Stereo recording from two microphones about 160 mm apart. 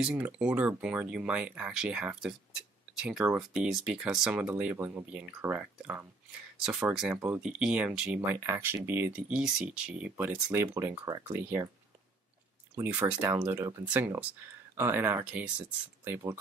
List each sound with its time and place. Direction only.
0.0 s speech: 10° right (ahead or behind)
7.4 s speech: 5° right (ahead or behind)
12.7 s speech: 15° right (ahead or behind)